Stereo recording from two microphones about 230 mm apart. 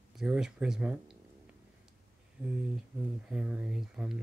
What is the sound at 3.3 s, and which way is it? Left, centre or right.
Speech, centre.